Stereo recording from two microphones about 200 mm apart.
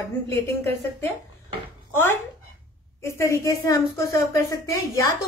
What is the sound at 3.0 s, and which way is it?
A woman's voice, 15° left (ahead or behind).